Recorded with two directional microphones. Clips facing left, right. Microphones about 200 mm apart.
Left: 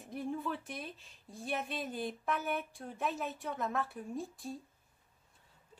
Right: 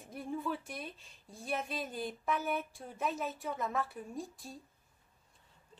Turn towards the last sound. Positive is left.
turn(degrees=0)  # may be behind; listen again after turning